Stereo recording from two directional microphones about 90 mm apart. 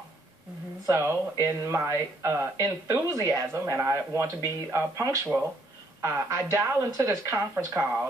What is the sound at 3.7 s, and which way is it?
A woman's voice, 30° right (ahead or behind).